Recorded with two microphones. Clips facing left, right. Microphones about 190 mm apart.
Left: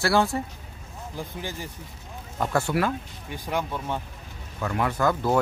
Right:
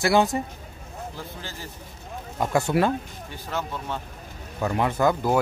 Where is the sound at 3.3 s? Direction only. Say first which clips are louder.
Left 2 dB; 15° left (ahead or behind).